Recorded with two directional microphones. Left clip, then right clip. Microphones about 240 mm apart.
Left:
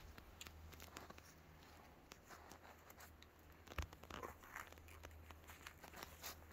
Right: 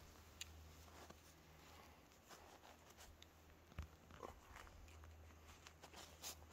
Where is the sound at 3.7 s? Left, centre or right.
Left.